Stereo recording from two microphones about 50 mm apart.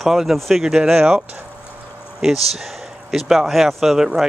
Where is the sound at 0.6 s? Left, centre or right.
Centre.